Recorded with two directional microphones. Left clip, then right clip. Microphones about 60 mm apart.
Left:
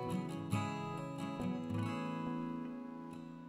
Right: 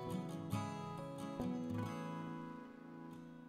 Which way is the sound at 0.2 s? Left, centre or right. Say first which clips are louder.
Left 4 dB; left.